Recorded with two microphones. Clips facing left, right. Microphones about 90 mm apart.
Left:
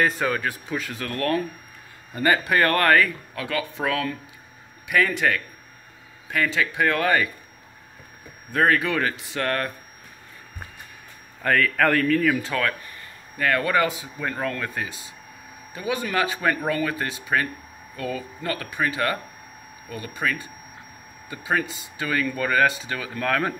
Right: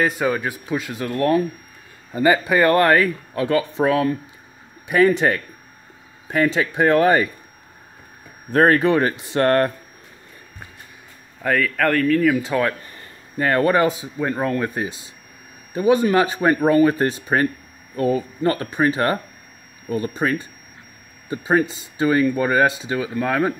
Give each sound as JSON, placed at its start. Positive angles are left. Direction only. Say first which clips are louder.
{"t": 0.0, "sound": "speech", "louder": "right 3 dB", "side_deg": -10}
{"t": 8.5, "sound": "speech", "louder": "right 6 dB", "side_deg": -40}
{"t": 11.4, "sound": "speech", "louder": "right 1 dB", "side_deg": -5}
{"t": 12.9, "sound": "a man's voice", "louder": "right 8 dB", "side_deg": -30}